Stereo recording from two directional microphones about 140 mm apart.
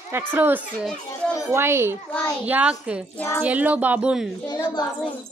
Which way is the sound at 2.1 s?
10° left (ahead or behind).